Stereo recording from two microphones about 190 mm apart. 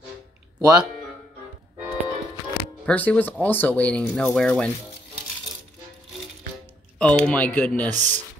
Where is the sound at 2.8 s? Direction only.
5° left (ahead or behind).